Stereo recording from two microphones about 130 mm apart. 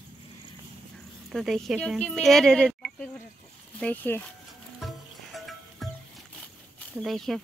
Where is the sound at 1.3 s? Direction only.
Centre (ahead or behind).